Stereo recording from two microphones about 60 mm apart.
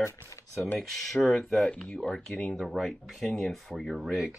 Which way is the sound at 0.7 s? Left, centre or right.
Centre.